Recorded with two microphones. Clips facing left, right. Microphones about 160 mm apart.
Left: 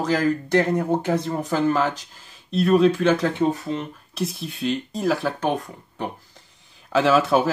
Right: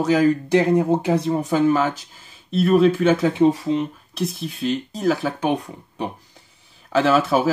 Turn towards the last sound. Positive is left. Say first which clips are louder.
# right 1 dB
turn(degrees=0)  # may be behind; listen again after turning